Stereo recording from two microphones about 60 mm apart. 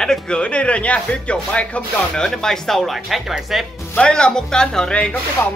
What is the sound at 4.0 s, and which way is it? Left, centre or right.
Speech, centre.